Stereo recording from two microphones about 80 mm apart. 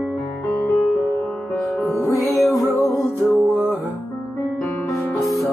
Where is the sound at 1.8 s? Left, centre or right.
Left.